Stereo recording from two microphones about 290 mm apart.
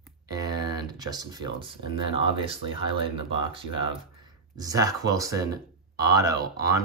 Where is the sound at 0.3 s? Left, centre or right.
Centre.